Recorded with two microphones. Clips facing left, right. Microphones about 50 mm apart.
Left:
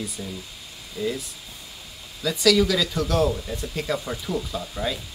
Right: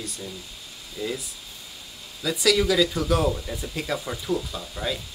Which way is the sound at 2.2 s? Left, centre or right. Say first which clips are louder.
Left 2 dB; centre.